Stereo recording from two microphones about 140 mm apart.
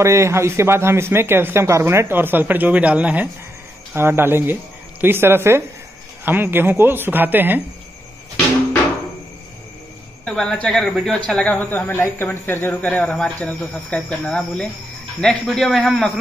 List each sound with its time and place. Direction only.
0.0 s a man's voice: 20° right (ahead or behind)
10.2 s a man's voice: centre (ahead or behind)